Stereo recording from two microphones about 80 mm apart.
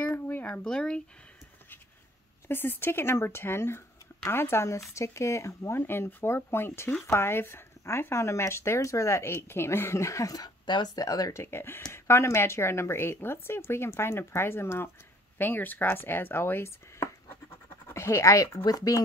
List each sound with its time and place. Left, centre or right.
0.0 s a sound: left
0.7 s speech: centre
2.4 s speech: left
5.8 s speech: left
10.6 s speech: left
11.3 s speech: left